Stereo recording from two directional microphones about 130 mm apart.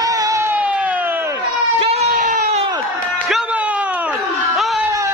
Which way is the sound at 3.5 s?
10° right (ahead or behind).